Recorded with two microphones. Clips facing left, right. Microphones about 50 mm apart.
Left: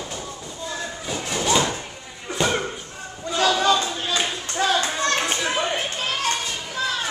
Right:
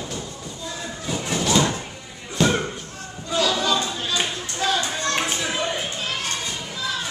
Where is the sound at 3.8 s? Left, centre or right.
Centre.